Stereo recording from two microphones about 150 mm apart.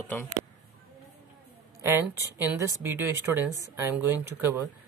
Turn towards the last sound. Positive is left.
turn(degrees=-15)  # may be behind; listen again after turning